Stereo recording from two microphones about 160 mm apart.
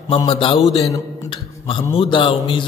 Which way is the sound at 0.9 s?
30° left (ahead or behind).